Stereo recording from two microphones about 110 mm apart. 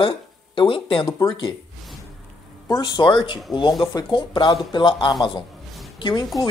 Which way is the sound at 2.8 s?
50° left (ahead or behind).